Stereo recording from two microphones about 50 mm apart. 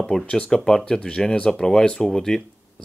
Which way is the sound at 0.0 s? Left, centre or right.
Centre.